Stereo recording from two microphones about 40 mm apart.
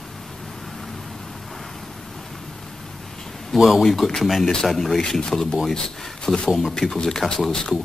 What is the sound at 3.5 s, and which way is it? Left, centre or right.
Speech, centre.